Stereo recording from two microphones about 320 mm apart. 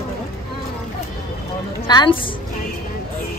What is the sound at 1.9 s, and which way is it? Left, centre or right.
Speech, centre.